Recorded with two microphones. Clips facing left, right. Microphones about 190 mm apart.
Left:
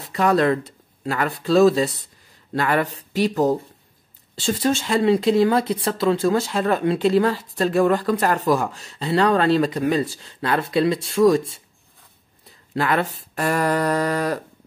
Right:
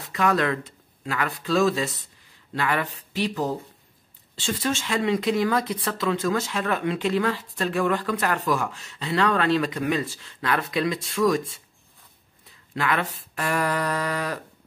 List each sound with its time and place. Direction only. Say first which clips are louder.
0.0 s speech: left 5 dB; 35° left (ahead or behind)
12.7 s speech: left 4 dB; 35° left (ahead or behind)